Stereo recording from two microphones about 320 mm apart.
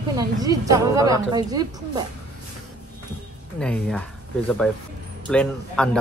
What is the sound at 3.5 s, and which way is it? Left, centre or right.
Speech, centre.